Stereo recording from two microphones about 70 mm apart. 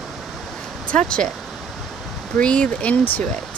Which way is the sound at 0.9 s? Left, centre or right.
Centre.